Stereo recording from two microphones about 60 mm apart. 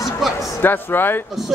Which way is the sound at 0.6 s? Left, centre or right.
Left.